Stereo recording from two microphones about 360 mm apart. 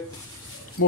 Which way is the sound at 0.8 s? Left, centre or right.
Left.